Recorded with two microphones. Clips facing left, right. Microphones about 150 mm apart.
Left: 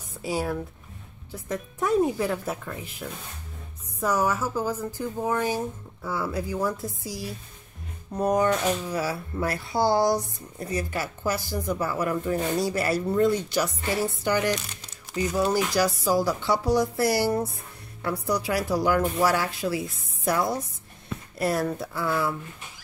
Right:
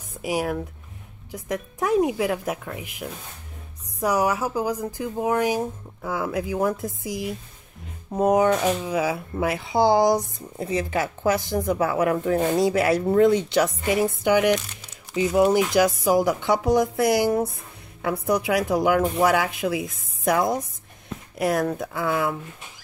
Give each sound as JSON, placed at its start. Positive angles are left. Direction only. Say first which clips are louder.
{"t": 0.1, "sound": "speech", "louder": "right 3 dB", "side_deg": -15}
{"t": 11.8, "sound": "speech", "louder": "right 5 dB", "side_deg": -65}
{"t": 12.4, "sound": "speech", "louder": "right 5 dB", "side_deg": -20}
{"t": 13.1, "sound": "speech", "louder": "right 5 dB", "side_deg": -70}
{"t": 13.7, "sound": "speech", "louder": "right 5 dB", "side_deg": -20}
{"t": 21.1, "sound": "a sound", "louder": "right 3 dB", "side_deg": -15}
{"t": 21.7, "sound": "speech", "louder": "right 2 dB", "side_deg": -15}